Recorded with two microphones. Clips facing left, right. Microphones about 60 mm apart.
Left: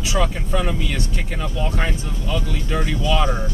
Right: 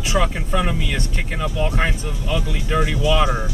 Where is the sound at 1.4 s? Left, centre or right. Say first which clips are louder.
Right 3 dB; right.